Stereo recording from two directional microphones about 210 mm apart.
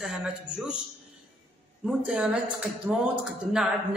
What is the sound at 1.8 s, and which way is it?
Speech, 5° right (ahead or behind).